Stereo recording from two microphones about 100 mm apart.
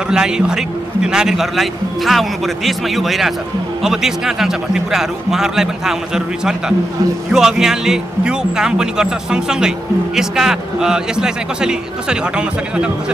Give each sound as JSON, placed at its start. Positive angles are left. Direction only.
{"t": 0.1, "sound": "a man's voice", "side_deg": -5}